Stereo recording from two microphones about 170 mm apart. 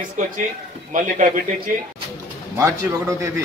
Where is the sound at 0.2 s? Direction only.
50° right (ahead or behind).